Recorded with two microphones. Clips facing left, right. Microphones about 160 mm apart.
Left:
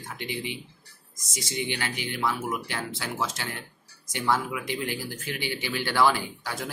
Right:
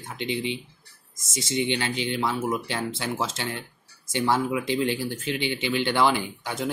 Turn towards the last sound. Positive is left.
turn(degrees=-20)  # may be behind; listen again after turning